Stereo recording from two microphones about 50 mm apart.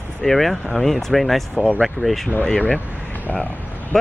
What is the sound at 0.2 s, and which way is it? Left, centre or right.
Speech, centre.